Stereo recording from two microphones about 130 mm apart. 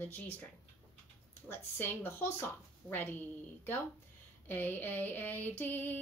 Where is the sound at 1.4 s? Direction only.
15° left (ahead or behind).